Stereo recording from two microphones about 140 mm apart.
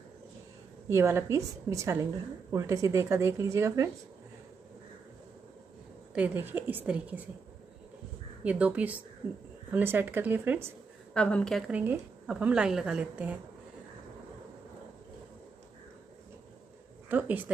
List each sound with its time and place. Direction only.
0.8 s speech: 20° right (ahead or behind)
6.1 s a woman's voice: 15° right (ahead or behind)
8.5 s a woman's voice: 10° right (ahead or behind)
11.1 s a woman's voice: 5° left (ahead or behind)
11.7 s a woman's voice: 10° right (ahead or behind)
17.1 s speech: 15° right (ahead or behind)